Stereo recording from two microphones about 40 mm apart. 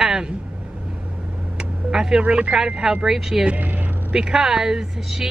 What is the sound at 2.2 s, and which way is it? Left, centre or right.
Speech, right.